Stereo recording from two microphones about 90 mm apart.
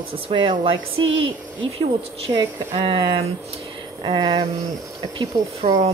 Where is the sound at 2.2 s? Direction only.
65° right (ahead or behind).